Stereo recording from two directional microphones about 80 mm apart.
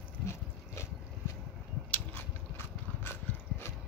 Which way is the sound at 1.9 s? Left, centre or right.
Left.